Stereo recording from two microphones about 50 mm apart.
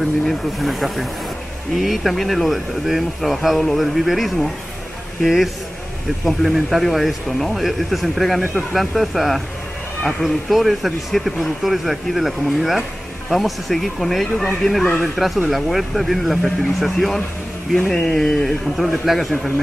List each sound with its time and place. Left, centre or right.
0.0 s speech: centre
14.3 s speech: centre
15.0 s speech: centre